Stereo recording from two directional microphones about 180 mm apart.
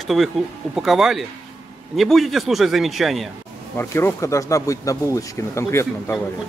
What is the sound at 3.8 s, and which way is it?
Speech, 15° left (ahead or behind).